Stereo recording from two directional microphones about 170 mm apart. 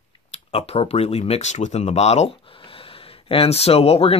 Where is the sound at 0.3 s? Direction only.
35° left (ahead or behind).